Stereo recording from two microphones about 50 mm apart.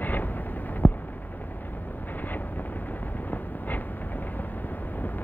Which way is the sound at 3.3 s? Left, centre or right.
Left.